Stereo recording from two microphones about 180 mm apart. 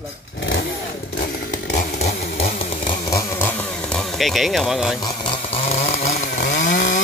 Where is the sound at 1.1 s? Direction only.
55° left (ahead or behind).